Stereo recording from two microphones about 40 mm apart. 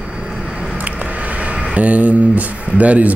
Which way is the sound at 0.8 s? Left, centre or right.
Right.